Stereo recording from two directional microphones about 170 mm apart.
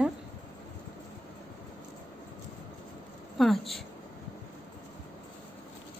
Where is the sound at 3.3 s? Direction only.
Centre (ahead or behind).